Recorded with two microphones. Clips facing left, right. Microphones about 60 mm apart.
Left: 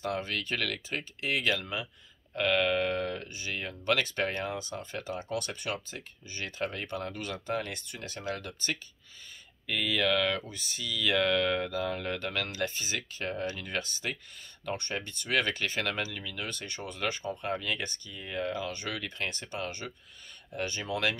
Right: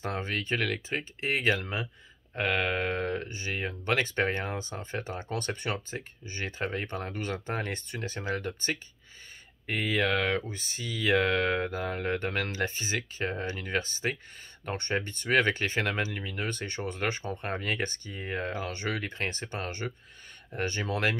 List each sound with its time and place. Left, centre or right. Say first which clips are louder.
0.0 s speech: even; right